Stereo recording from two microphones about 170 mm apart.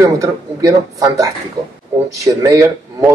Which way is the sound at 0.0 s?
20° right (ahead or behind).